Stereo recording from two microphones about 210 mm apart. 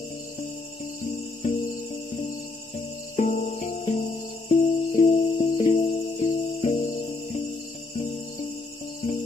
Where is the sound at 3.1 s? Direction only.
40° left (ahead or behind).